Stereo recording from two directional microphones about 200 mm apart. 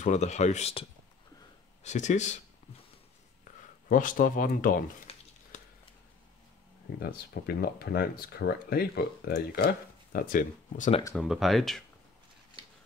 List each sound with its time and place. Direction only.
0.0 s speech: 35° left (ahead or behind)
3.9 s speech: 40° left (ahead or behind)
5.1 s a sound: 30° left (ahead or behind)
7.0 s speech: 50° left (ahead or behind)
11.1 s speech: centre (ahead or behind)